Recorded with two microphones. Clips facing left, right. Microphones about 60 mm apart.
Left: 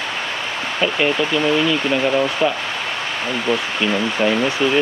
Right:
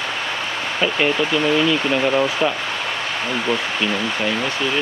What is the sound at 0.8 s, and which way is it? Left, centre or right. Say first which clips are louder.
Speech: left 1 dB; centre.